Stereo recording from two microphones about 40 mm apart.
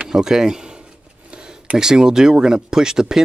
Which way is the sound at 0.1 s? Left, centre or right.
Centre.